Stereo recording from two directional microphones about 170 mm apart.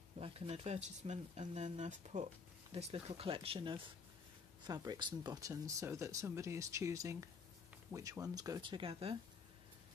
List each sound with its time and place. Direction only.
0.2 s speech: 35° right (ahead or behind)